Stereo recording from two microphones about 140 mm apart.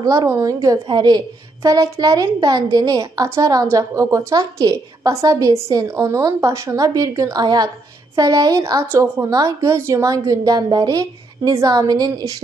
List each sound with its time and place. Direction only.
0.0 s a woman's voice: 25° right (ahead or behind)